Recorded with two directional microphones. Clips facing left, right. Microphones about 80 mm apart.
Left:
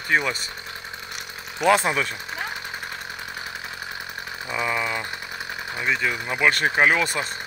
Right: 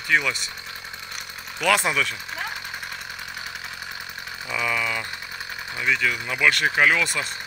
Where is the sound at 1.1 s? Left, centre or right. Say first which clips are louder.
Left 1 dB; left.